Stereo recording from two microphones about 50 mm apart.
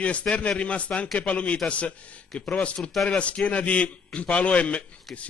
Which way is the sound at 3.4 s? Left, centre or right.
Left.